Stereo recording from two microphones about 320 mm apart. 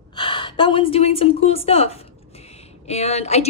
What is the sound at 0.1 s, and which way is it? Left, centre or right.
A woman's voice, centre.